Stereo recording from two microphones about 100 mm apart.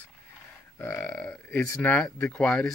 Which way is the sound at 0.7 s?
25° left (ahead or behind).